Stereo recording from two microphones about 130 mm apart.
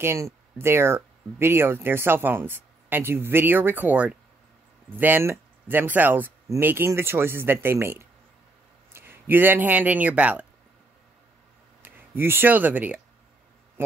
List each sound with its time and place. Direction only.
0.0 s speech: 20° right (ahead or behind)
11.8 s speech: 15° right (ahead or behind)